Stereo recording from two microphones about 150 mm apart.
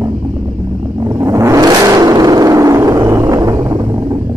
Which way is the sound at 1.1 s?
20° right (ahead or behind).